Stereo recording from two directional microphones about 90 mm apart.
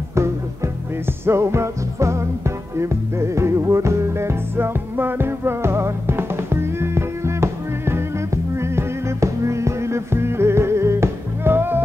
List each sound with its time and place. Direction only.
1.2 s music: 30° right (ahead or behind)